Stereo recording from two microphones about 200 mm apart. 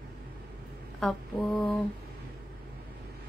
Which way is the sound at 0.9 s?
Centre (ahead or behind).